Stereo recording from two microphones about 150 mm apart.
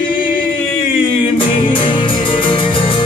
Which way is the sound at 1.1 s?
35° left (ahead or behind).